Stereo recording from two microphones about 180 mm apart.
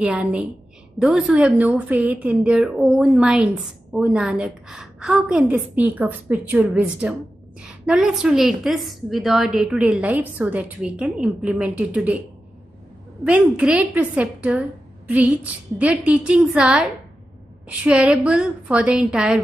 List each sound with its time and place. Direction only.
0.0 s a woman's voice: 5° right (ahead or behind)
13.2 s a woman's voice: 5° right (ahead or behind)